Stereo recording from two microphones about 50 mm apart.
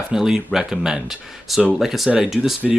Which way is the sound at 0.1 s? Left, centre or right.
Centre.